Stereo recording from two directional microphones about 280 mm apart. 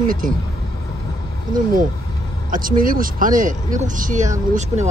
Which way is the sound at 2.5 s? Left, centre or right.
Right.